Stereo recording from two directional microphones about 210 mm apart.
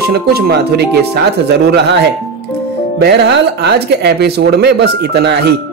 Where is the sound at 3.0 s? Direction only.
50° right (ahead or behind).